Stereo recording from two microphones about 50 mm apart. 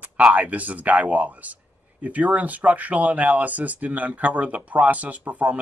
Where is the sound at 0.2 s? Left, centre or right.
Right.